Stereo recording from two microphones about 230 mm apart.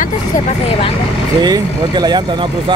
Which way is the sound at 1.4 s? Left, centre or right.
Centre.